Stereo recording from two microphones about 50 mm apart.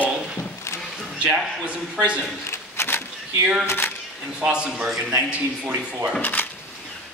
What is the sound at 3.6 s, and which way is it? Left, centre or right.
Speech, left.